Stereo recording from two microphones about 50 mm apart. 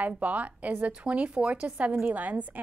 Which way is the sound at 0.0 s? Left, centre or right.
Right.